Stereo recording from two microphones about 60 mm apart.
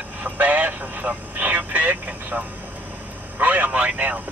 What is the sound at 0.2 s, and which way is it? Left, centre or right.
Vehicle, right.